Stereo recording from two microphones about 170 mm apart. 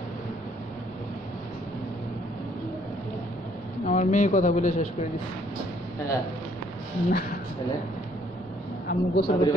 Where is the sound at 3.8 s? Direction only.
45° left (ahead or behind).